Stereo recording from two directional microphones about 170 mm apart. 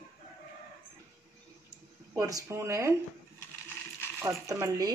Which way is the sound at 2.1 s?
20° right (ahead or behind).